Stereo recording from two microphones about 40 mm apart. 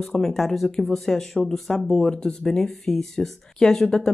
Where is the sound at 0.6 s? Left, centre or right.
Centre.